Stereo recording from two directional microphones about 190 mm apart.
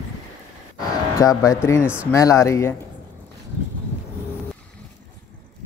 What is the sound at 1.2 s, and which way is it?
Speech, 15° left (ahead or behind).